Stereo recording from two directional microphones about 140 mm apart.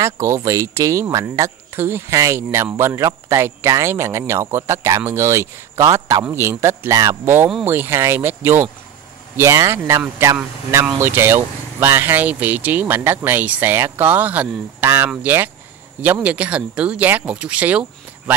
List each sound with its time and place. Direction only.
0.0 s speech: 20° right (ahead or behind)